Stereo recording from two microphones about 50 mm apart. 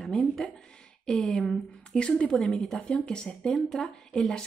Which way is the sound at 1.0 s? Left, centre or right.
Centre.